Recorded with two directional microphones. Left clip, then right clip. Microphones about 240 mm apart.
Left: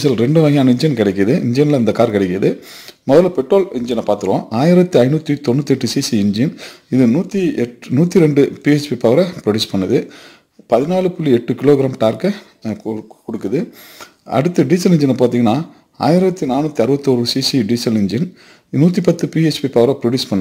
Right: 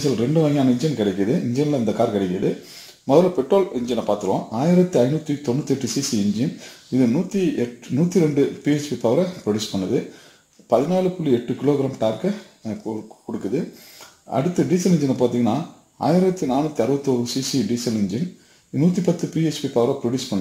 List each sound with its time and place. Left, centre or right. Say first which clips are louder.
0.0 s a man's voice: left 7 dB; left
14.3 s a man's voice: left 6 dB; left